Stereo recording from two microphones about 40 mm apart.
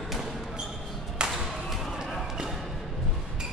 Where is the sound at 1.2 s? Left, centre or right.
Right.